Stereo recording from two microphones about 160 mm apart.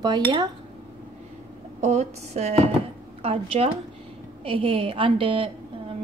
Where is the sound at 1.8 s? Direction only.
45° right (ahead or behind).